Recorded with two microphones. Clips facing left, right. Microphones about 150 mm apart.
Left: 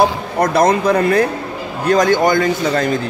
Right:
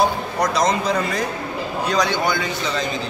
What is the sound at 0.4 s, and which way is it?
A man's voice, 55° left (ahead or behind).